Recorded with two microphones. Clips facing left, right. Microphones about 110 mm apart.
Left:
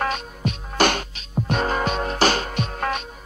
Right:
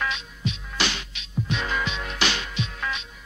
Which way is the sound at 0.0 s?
50° left (ahead or behind).